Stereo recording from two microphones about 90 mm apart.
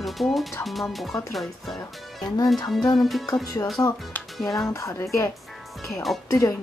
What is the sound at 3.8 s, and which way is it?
Speech, 35° left (ahead or behind).